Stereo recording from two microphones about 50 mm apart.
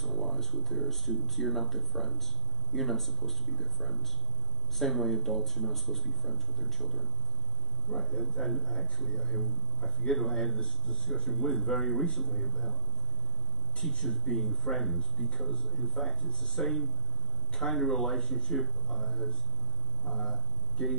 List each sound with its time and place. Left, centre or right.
0.0 s speech: centre
10.4 s speech: centre
10.9 s speech: centre
13.8 s speech: centre